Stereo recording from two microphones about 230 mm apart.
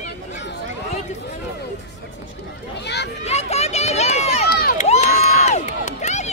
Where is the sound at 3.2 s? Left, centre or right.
Left.